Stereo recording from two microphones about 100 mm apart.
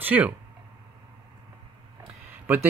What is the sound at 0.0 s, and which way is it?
Speech, 15° right (ahead or behind).